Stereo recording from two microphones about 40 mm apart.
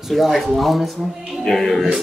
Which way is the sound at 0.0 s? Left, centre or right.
Centre.